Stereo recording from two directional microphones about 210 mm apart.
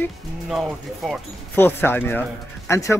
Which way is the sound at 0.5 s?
Centre (ahead or behind).